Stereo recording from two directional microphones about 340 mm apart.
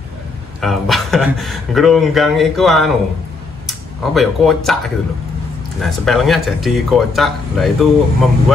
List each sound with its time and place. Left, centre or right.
0.6 s speech: centre
5.8 s speech: centre